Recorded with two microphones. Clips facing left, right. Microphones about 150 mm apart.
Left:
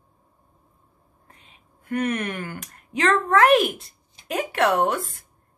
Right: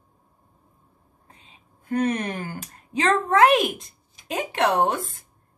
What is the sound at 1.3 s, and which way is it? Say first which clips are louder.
A woman's voice: right 1 dB; 30° right (ahead or behind).